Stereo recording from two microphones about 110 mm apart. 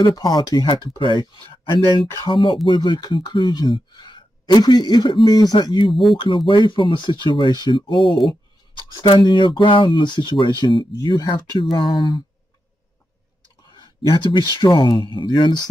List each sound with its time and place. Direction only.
0.0 s speech: 35° left (ahead or behind)
5.9 s speech: centre (ahead or behind)
6.1 s speech: 50° left (ahead or behind)
8.0 s speech: centre (ahead or behind)
9.0 s speech: 45° left (ahead or behind)
11.7 s speech: 50° left (ahead or behind)
13.7 s speech: 40° left (ahead or behind)